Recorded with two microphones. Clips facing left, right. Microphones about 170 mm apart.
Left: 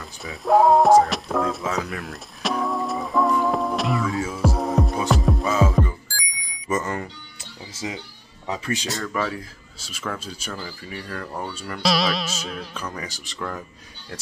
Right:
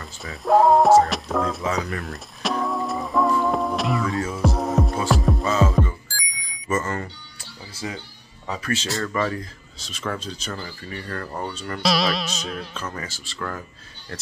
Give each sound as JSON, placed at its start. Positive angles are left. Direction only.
{"t": 0.0, "sound": "music", "side_deg": 0}
{"t": 6.7, "sound": "speech", "side_deg": 15}
{"t": 8.9, "sound": "speech", "side_deg": 0}